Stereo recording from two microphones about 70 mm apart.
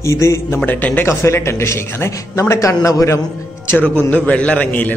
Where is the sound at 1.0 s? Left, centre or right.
Left.